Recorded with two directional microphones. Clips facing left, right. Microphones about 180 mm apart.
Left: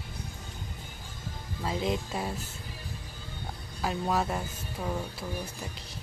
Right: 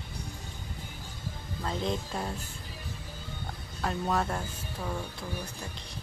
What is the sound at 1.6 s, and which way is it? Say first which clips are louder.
Speech: left 2 dB; 5° left (ahead or behind).